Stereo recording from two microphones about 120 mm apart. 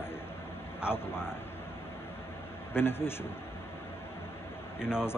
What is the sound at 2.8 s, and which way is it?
Speech, 20° left (ahead or behind).